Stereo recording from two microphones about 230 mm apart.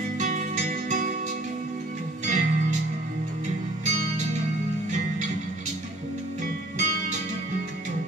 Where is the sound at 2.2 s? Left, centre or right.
Right.